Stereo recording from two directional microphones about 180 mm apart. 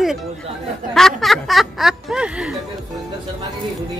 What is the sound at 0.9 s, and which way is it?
Speech, centre (ahead or behind).